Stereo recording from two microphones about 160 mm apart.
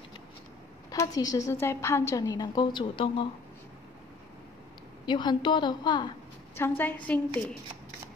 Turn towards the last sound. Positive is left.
turn(degrees=10)  # may be behind; listen again after turning